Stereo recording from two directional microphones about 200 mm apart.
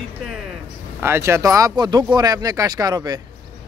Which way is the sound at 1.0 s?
10° right (ahead or behind).